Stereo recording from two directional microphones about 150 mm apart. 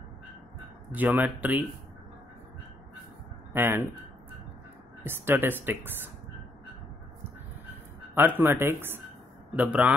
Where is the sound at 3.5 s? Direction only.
15° right (ahead or behind).